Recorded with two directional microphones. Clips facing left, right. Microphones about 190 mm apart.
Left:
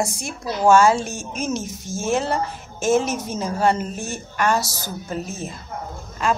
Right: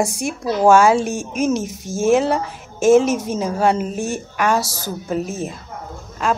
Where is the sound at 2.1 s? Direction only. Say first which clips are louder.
Right 5 dB; centre (ahead or behind).